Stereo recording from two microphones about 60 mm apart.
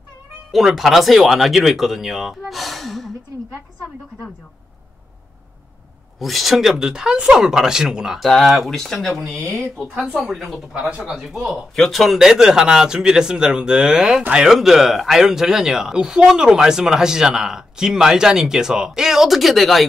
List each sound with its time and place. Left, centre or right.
0.5 s speech: centre
6.1 s speech: centre
8.2 s speech: centre
10.9 s speech: right
11.1 s speech: centre
11.7 s speech: centre